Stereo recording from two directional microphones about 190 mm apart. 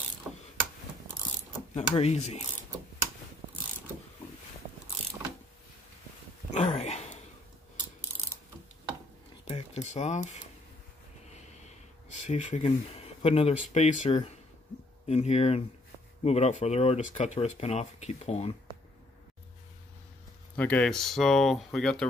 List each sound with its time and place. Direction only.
0.3 s ratchet: 10° right (ahead or behind)
1.8 s speech: 35° left (ahead or behind)
6.5 s dog: 35° left (ahead or behind)
9.5 s a sound: 35° left (ahead or behind)
11.3 s snort: 35° left (ahead or behind)
12.2 s speech: 40° left (ahead or behind)
20.5 s speech: 10° left (ahead or behind)